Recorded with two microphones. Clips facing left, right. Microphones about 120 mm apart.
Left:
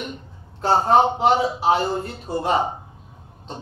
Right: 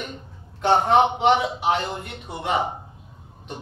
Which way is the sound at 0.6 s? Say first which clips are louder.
Left 1 dB; 35° left (ahead or behind).